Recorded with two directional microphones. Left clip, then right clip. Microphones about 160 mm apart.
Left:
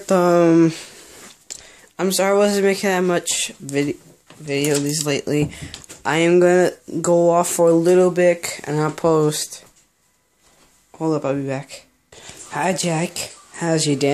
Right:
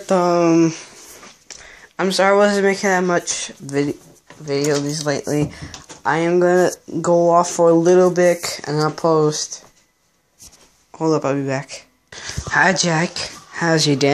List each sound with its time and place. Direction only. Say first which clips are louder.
0.0 s speech: even; 25° left (ahead or behind)
0.3 s speech: left 2 dB; 35° left (ahead or behind)
1.5 s speech: right 1 dB; 20° left (ahead or behind)
6.6 s speech: right 1 dB; 15° left (ahead or behind)
7.8 s speech: right 1 dB; 5° left (ahead or behind)
8.6 s speech: right 1 dB; 15° left (ahead or behind)
9.3 s speech: right 2 dB; 45° left (ahead or behind)
11.0 s speech: right 3 dB; 5° left (ahead or behind)